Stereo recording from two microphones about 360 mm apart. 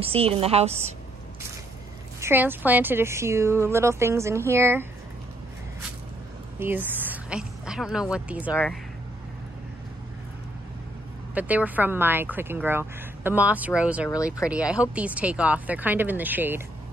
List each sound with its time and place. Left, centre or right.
0.0 s a woman's voice: centre
2.1 s a woman's voice: centre
6.6 s a woman's voice: centre
11.3 s speech: centre
14.1 s speech: centre
14.5 s speech: centre